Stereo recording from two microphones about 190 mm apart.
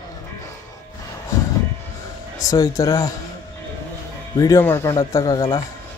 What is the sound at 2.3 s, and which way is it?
Speech, 15° left (ahead or behind).